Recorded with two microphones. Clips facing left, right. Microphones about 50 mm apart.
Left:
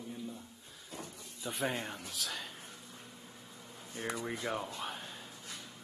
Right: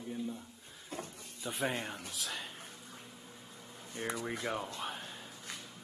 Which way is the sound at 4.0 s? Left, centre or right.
Centre.